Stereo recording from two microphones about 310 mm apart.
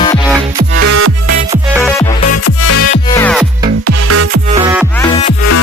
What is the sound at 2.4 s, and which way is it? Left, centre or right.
Music, left.